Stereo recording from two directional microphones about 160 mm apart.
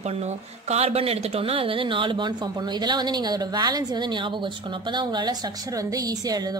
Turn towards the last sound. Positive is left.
turn(degrees=-25)  # may be behind; listen again after turning